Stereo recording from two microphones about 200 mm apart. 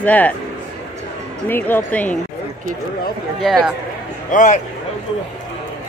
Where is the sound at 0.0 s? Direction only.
5° left (ahead or behind).